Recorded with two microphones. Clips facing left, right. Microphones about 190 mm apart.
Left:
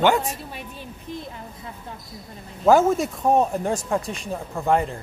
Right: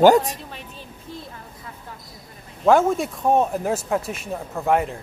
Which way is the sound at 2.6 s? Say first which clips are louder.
Even; centre (ahead or behind).